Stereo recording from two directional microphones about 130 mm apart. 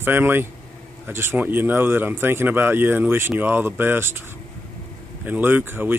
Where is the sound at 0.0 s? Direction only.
15° right (ahead or behind).